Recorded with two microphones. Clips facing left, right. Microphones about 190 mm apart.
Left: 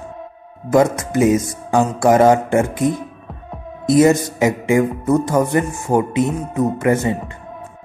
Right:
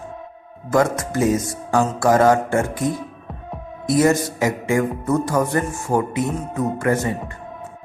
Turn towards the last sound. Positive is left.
turn(degrees=20)  # may be behind; listen again after turning